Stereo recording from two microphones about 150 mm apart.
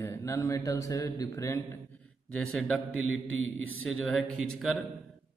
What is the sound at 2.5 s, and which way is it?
Speech, centre (ahead or behind).